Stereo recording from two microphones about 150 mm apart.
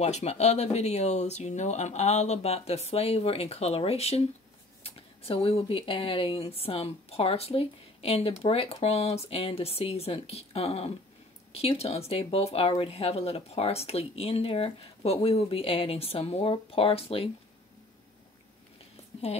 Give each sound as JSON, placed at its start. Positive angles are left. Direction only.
{"t": 0.0, "sound": "speech", "side_deg": 45}